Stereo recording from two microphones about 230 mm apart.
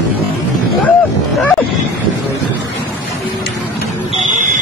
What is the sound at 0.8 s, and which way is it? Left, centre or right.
Dog, centre.